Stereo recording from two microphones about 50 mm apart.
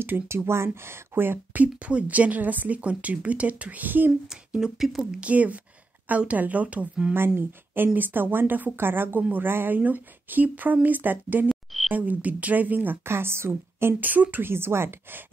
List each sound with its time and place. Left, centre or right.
0.5 s a woman's voice: right
1.5 s a woman's voice: right
4.5 s speech: centre
5.2 s a woman's voice: right
7.3 s a woman's voice: right
9.8 s speech: right
11.4 s frog: centre
11.9 s speech: right
13.0 s a woman's voice: right
14.0 s speech: right
14.4 s a woman's voice: right